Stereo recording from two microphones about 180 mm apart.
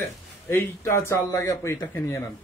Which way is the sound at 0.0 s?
15° left (ahead or behind).